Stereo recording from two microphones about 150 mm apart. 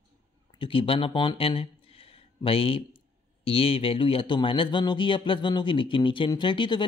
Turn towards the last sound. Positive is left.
turn(degrees=35)  # may be behind; listen again after turning